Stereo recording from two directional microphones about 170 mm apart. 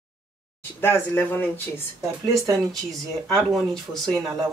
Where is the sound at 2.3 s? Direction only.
20° right (ahead or behind).